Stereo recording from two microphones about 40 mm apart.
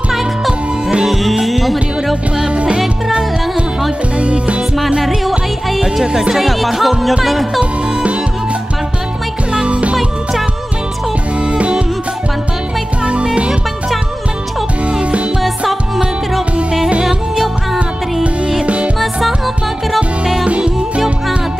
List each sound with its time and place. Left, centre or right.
0.5 s music: centre
1.0 s music: centre
2.5 s music: right
4.2 s music: right
6.3 s music: centre
9.5 s music: right
13.0 s music: right
15.0 s music: right
18.9 s music: centre
20.4 s music: right